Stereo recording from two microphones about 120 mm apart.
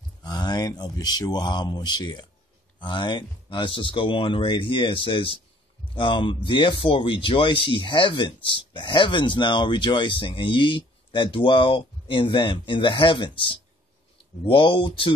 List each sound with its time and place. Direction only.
0.2 s speech: 35° left (ahead or behind)